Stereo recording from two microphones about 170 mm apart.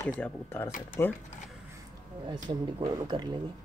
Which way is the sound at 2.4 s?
25° right (ahead or behind).